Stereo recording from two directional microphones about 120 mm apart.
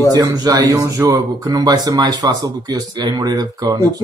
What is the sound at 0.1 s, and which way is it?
Speech, 35° right (ahead or behind).